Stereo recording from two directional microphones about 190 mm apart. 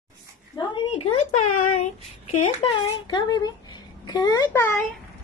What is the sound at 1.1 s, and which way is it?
Speech, 40° left (ahead or behind).